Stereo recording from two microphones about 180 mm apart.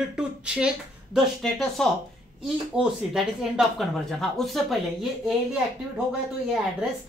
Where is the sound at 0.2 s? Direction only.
5° right (ahead or behind).